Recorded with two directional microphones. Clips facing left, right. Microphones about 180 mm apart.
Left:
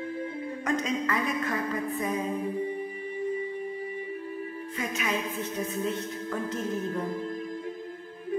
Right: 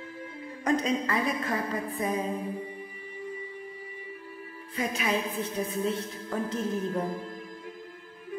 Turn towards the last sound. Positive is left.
turn(degrees=-30)  # may be behind; listen again after turning